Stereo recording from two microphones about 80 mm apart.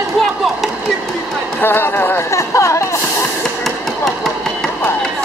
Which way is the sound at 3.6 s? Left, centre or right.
Centre.